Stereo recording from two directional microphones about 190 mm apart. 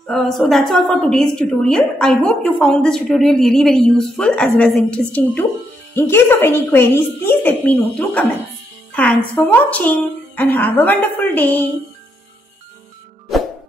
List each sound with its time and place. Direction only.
0.0 s a woman's voice: centre (ahead or behind)